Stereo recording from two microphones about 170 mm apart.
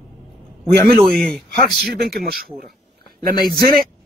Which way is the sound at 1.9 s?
65° right (ahead or behind).